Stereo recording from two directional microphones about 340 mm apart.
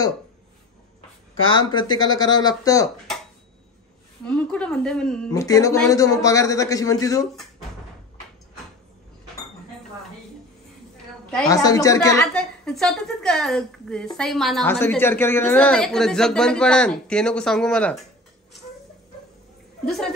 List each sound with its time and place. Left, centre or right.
1.5 s speech: centre
4.3 s speech: centre
11.3 s a woman's voice: centre
19.8 s a woman's voice: centre